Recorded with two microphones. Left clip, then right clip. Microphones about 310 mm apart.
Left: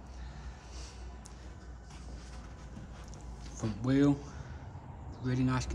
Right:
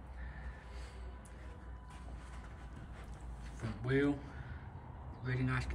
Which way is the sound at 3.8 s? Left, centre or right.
Centre.